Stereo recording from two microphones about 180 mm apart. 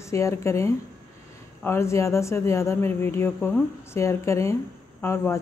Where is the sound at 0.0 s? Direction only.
15° left (ahead or behind).